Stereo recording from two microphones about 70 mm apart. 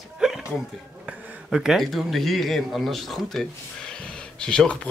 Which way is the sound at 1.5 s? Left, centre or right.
Centre.